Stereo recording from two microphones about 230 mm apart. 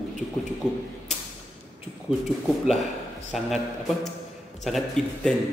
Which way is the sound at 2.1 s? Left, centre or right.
Left.